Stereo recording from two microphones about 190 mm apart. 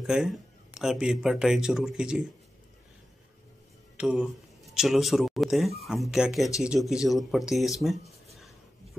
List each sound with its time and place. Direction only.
0.0 s speech: 5° right (ahead or behind)
3.9 s speech: 5° right (ahead or behind)